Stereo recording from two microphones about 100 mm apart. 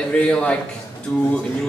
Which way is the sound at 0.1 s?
10° left (ahead or behind).